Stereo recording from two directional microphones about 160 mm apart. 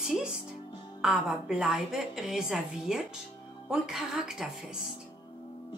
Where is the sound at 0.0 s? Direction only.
5° right (ahead or behind).